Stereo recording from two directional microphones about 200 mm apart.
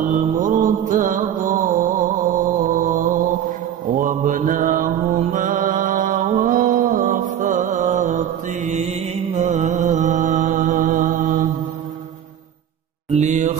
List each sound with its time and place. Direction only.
0.1 s mantra: 40° right (ahead or behind)
2.6 s music: 40° right (ahead or behind)
3.9 s mantra: 40° right (ahead or behind)
13.1 s mantra: 35° right (ahead or behind)